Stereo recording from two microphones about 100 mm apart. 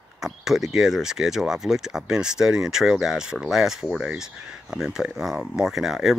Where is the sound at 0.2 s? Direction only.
5° right (ahead or behind).